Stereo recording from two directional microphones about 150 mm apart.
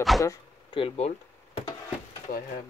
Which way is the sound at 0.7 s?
35° left (ahead or behind).